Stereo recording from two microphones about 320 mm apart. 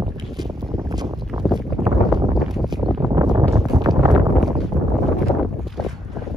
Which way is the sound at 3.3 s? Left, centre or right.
Centre.